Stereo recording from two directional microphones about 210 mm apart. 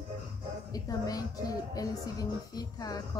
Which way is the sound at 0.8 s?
15° left (ahead or behind).